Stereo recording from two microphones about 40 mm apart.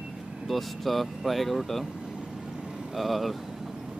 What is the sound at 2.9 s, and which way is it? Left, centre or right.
Speech, centre.